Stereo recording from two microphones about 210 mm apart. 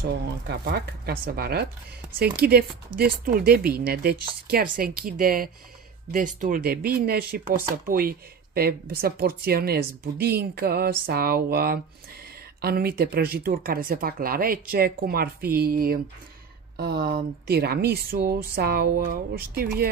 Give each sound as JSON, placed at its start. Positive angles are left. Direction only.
{"t": 0.0, "sound": "speech", "side_deg": -50}